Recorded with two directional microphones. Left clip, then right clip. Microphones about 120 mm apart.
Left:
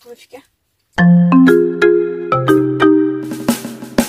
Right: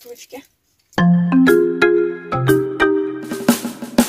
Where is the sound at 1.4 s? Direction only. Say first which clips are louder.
Left 1 dB; centre (ahead or behind).